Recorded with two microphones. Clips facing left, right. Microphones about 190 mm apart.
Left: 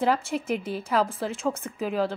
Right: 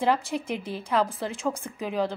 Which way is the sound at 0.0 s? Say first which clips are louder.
Even; centre (ahead or behind).